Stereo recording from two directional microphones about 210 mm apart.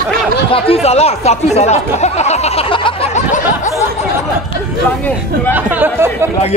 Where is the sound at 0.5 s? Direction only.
30° left (ahead or behind).